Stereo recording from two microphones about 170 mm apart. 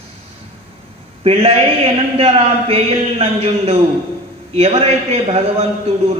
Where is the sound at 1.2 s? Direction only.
35° right (ahead or behind).